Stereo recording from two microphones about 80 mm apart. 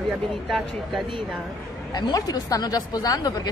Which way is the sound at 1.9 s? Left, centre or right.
Left.